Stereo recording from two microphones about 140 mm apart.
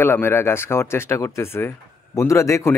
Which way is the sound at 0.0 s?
15° left (ahead or behind).